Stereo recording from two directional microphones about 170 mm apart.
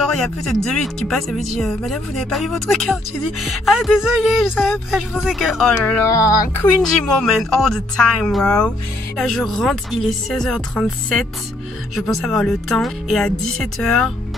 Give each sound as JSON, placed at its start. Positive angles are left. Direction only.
{"t": 0.0, "sound": "speech", "side_deg": 0}
{"t": 6.0, "sound": "speech", "side_deg": 20}
{"t": 6.8, "sound": "speech", "side_deg": 0}